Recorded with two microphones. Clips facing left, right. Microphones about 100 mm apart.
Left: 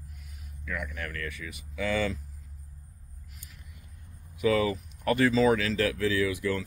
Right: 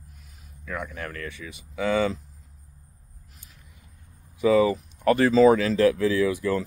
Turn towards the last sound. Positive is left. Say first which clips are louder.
# right 5 dB
turn(degrees=-35)  # may be behind; listen again after turning